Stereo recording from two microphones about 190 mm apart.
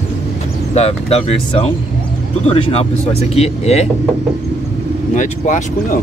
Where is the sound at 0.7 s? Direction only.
30° left (ahead or behind).